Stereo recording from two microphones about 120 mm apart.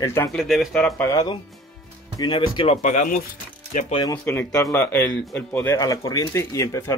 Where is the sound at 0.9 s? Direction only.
25° left (ahead or behind).